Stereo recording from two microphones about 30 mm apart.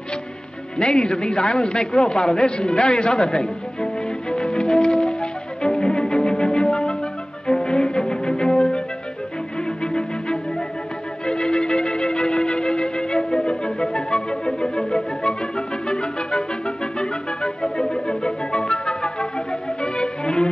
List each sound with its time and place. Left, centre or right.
0.7 s music: left
9.9 s music: left